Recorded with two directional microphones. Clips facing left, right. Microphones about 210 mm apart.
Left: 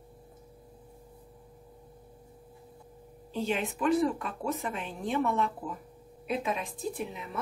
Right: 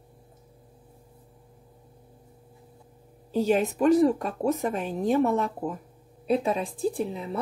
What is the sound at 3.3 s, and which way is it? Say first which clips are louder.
Speech: right 8 dB; 40° right (ahead or behind).